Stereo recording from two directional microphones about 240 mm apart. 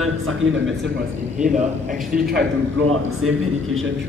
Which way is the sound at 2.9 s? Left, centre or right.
Right.